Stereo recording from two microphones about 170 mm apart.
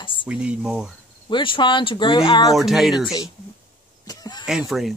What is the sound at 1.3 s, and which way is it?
Speech, 30° left (ahead or behind).